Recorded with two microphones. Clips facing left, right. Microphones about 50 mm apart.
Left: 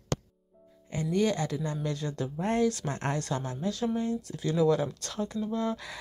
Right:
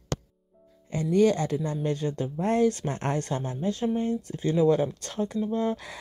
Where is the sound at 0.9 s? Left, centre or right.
Right.